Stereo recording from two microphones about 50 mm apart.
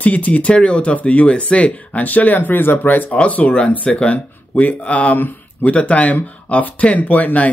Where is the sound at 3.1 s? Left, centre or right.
Left.